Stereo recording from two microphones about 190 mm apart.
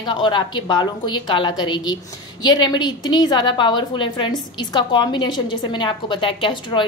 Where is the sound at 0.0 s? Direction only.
25° left (ahead or behind).